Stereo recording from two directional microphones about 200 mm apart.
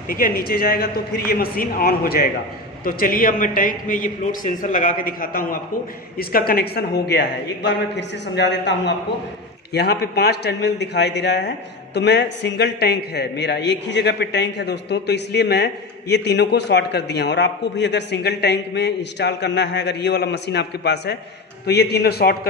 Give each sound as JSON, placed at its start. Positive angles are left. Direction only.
{"t": 0.1, "sound": "a man's voice", "side_deg": 45}